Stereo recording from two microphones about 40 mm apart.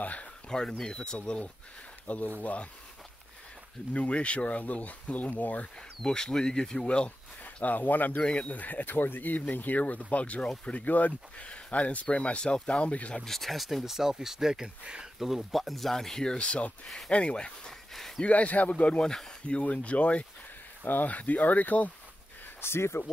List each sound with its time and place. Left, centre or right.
0.0 s a sound: left
0.5 s speech: centre
2.0 s speech: left
3.9 s speech: left
6.0 s speech: centre
7.4 s speech: left
9.6 s speech: left
13.2 s speech: centre
15.1 s speech: centre
16.3 s speech: left
17.6 s a sound: centre
18.2 s speech: left
20.8 s speech: left
22.6 s speech: left